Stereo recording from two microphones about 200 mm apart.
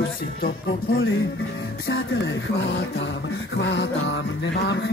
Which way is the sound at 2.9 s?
60° left (ahead or behind).